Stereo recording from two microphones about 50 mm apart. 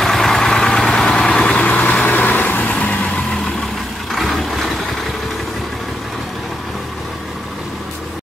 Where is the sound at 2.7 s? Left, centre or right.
Centre.